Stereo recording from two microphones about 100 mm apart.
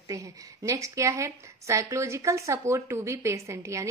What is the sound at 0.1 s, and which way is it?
A woman's voice, 35° right (ahead or behind).